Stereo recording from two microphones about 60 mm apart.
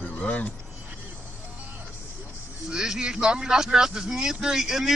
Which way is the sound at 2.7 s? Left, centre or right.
Centre.